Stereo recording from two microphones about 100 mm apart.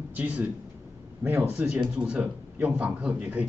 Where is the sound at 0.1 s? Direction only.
15° right (ahead or behind).